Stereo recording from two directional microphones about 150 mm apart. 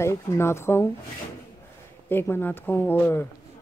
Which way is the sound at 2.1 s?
15° left (ahead or behind).